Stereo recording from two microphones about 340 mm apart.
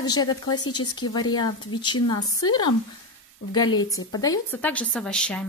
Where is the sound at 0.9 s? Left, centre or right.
Centre.